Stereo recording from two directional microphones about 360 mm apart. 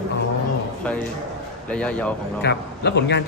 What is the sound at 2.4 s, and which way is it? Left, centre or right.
Speech, left.